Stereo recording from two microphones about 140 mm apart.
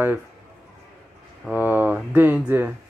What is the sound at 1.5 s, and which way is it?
Speech, 15° right (ahead or behind).